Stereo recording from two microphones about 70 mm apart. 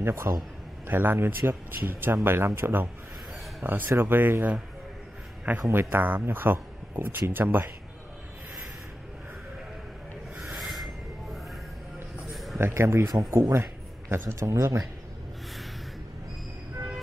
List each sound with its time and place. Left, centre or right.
0.0 s a man's voice: right
0.8 s speech: right
5.7 s speech: right
10.5 s a sound: centre
12.5 s speech: right